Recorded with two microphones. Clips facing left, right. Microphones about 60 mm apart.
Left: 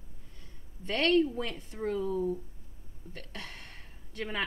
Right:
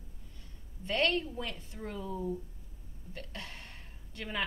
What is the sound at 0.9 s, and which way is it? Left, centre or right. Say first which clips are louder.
A woman's voice: left 5 dB; left.